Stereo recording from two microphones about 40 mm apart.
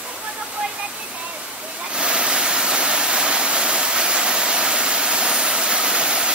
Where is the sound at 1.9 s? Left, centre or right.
Right.